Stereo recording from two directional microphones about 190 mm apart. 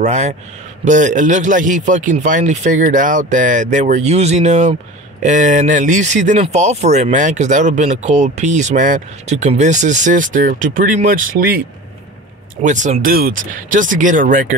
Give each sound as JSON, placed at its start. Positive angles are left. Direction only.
{"t": 0.0, "sound": "speech", "side_deg": -35}
{"t": 12.6, "sound": "speech", "side_deg": -40}